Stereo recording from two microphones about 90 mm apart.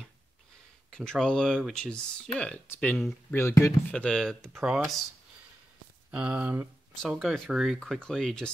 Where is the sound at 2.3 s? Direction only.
20° left (ahead or behind).